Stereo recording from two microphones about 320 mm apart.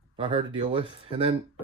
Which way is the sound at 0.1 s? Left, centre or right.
Centre.